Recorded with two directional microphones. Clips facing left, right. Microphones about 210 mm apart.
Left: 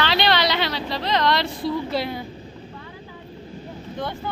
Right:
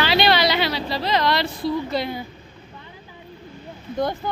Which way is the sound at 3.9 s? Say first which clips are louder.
Right 6 dB; 40° right (ahead or behind).